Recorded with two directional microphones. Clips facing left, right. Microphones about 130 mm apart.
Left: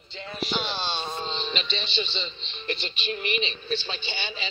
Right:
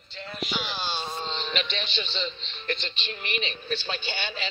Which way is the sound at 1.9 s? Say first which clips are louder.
Even; 45° right (ahead or behind).